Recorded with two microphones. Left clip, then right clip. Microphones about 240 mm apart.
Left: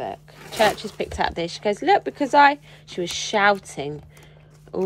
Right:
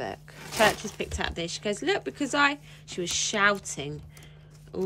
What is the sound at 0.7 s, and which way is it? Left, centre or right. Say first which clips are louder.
A woman's voice: left 5 dB; centre.